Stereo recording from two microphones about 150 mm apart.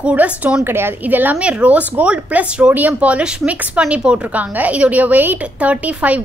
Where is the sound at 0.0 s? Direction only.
10° right (ahead or behind).